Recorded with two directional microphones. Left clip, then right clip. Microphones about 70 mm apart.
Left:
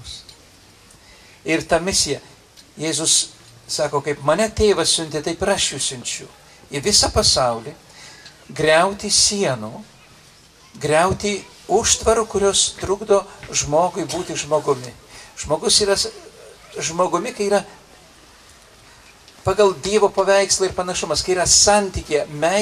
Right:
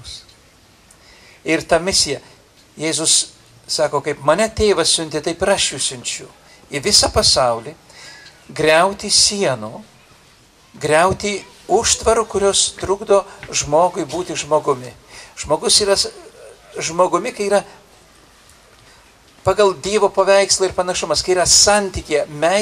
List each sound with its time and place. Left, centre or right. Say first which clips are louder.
1.4 s a man's voice: right 3 dB; right
10.8 s speech: right 3 dB; right
19.4 s speech: right 2 dB; right